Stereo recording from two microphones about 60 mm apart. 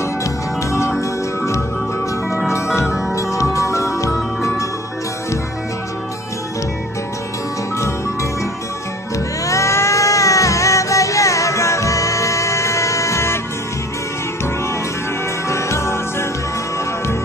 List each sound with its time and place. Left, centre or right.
0.2 s music: left
2.5 s music: left
3.2 s music: left
9.5 s music: left
15.4 s music: left